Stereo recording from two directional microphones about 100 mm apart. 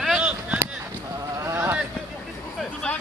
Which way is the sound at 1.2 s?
30° right (ahead or behind).